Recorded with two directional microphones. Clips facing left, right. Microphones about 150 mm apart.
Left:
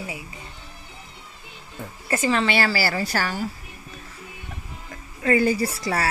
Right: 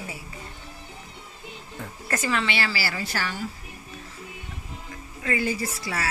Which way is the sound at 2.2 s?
40° left (ahead or behind).